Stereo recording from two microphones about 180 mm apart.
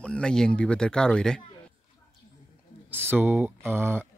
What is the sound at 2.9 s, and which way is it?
Speech, 10° right (ahead or behind).